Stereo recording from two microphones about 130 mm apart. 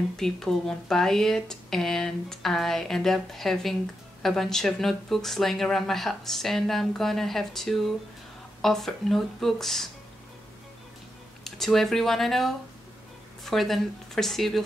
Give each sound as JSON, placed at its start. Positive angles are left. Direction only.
{"t": 0.2, "sound": "speech", "side_deg": 5}
{"t": 11.4, "sound": "speech", "side_deg": 0}